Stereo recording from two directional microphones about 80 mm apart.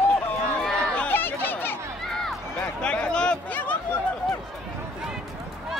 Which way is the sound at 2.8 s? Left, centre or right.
Centre.